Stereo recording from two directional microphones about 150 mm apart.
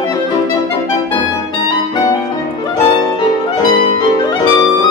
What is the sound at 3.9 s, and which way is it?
Clarinet, 30° left (ahead or behind).